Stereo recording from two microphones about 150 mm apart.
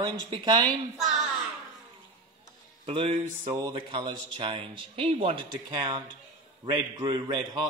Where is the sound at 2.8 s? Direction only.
35° right (ahead or behind).